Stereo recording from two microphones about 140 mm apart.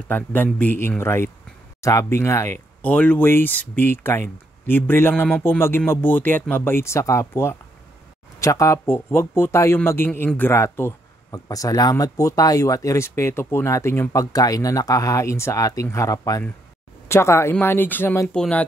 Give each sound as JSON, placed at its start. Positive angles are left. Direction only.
{"t": 0.1, "sound": "speech", "side_deg": 15}
{"t": 18.3, "sound": "speech", "side_deg": 10}